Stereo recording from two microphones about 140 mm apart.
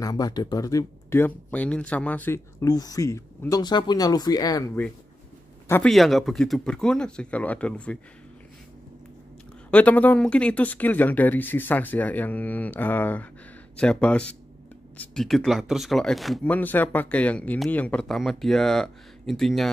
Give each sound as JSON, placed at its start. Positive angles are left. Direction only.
{"t": 0.0, "sound": "speech", "side_deg": 25}
{"t": 5.9, "sound": "speech", "side_deg": 0}
{"t": 9.7, "sound": "speech", "side_deg": 10}
{"t": 16.4, "sound": "speech", "side_deg": 10}